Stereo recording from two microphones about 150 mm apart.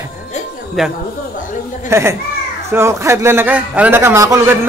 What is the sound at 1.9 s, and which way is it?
A man's voice, 20° right (ahead or behind).